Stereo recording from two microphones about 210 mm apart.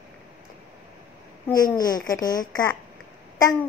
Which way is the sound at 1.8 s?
20° left (ahead or behind).